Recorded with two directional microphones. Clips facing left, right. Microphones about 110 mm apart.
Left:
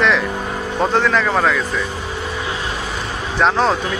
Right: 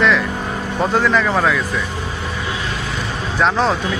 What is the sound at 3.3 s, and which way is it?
Speech, centre (ahead or behind).